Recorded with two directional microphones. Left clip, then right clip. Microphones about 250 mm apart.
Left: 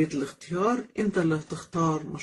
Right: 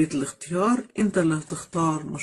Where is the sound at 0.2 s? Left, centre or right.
Right.